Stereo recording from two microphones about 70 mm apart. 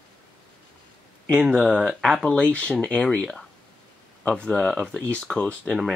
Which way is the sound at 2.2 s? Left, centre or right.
Centre.